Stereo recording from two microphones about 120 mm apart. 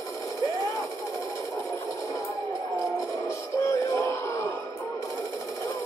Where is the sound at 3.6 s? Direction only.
25° left (ahead or behind).